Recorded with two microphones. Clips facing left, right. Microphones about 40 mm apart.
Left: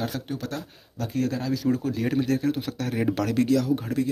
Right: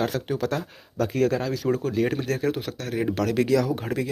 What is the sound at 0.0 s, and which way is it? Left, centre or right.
Speech, right.